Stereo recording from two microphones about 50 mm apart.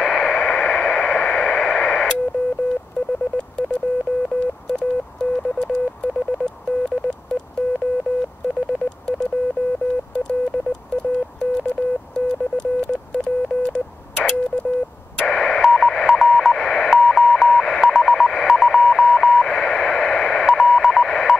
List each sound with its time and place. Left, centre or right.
0.0 s a sound: centre
0.4 s radio: left
13.1 s a sound: centre
15.3 s telephone dialing: centre
16.5 s radio: centre
16.9 s telephone dialing: centre